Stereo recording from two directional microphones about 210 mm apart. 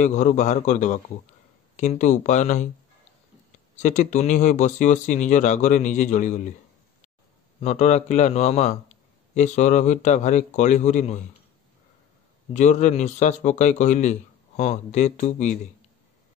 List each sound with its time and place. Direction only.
0.0 s a man's voice: 35° left (ahead or behind)
3.8 s a man's voice: 35° left (ahead or behind)
7.6 s a man's voice: 30° left (ahead or behind)
12.5 s a man's voice: 35° left (ahead or behind)